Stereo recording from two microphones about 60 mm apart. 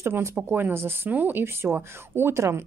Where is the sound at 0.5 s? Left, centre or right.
Right.